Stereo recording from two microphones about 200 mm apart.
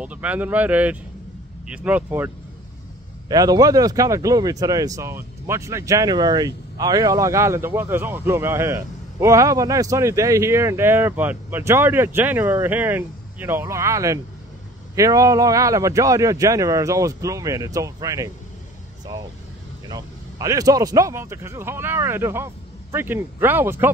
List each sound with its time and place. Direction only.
0.0 s speech: 5° right (ahead or behind)
19.9 s speech: 15° right (ahead or behind)